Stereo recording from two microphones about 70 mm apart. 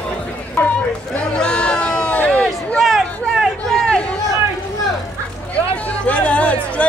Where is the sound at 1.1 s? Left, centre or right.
Centre.